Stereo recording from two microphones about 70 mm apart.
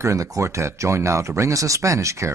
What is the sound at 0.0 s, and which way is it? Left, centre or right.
Speech, right.